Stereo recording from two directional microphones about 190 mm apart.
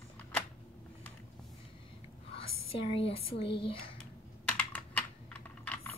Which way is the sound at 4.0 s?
5° left (ahead or behind).